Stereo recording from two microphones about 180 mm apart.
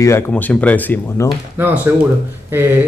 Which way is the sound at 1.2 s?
10° right (ahead or behind).